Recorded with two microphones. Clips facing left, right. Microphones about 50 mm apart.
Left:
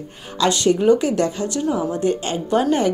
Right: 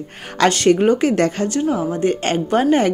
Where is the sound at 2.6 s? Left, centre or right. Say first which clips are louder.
Right 3 dB; right.